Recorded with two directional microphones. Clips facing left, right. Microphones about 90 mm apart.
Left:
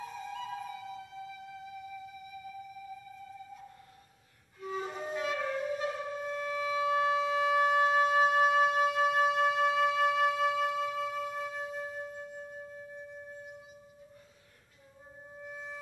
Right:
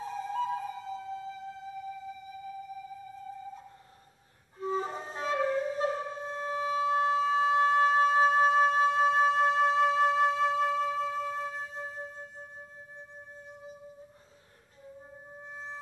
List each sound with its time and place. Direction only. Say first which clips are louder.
0.0 s music: right 7 dB; 35° right (ahead or behind)
4.6 s wind instrument: right 4 dB; 35° right (ahead or behind)
15.4 s music: even; 30° right (ahead or behind)